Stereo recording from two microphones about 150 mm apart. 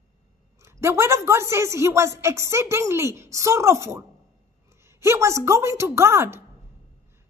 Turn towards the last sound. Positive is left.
turn(degrees=-15)  # may be behind; listen again after turning